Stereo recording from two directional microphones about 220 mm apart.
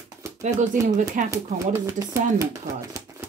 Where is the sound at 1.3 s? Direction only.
15° right (ahead or behind).